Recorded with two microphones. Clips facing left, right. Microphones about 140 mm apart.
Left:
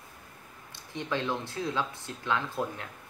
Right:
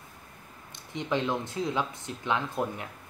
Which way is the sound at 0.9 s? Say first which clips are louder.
Right 3 dB; 15° right (ahead or behind).